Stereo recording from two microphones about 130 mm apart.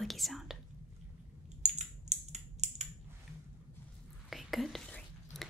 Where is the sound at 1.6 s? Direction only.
60° right (ahead or behind).